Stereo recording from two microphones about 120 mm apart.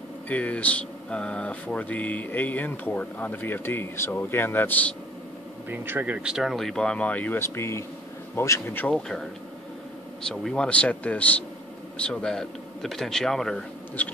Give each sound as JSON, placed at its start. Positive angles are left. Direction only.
{"t": 0.3, "sound": "speech", "side_deg": 10}
{"t": 5.7, "sound": "speech", "side_deg": -15}
{"t": 10.2, "sound": "speech", "side_deg": 5}
{"t": 14.0, "sound": "speech", "side_deg": 15}